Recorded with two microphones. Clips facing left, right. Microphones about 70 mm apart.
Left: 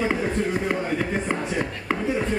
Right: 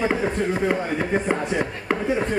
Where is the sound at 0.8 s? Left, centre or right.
Right.